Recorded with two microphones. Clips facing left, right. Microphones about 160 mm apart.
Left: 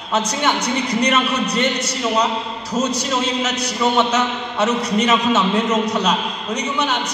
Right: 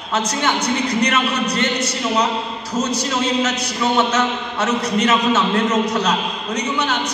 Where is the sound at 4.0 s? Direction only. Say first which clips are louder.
Even; 15° left (ahead or behind).